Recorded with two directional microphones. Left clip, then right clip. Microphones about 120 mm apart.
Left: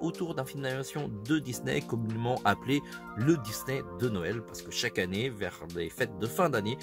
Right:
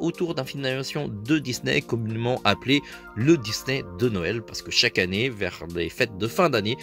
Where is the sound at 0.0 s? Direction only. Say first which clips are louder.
Right 7 dB; 15° right (ahead or behind).